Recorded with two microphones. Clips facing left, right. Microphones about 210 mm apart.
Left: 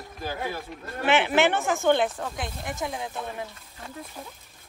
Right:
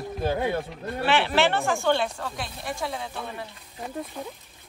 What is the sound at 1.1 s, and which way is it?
Speech, 15° left (ahead or behind).